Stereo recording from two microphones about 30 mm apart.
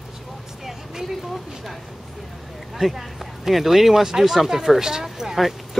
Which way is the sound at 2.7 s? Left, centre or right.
Centre.